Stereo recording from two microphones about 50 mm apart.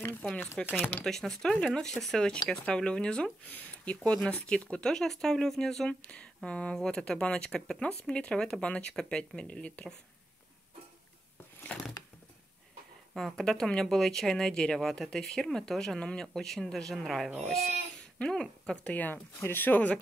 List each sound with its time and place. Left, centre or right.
0.2 s speech: centre
0.7 s speech: left
1.0 s speech: centre
5.9 s speech: left
13.1 s speech: centre
18.3 s speech: centre
18.9 s speech: left